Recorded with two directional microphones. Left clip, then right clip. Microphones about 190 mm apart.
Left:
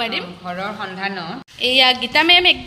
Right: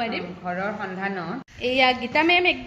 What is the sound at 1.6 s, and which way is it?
Speech, centre (ahead or behind).